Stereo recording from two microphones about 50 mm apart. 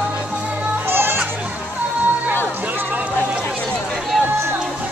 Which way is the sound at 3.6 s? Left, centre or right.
Centre.